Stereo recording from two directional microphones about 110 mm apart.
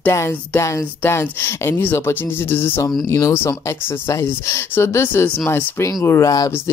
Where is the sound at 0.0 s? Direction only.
20° left (ahead or behind).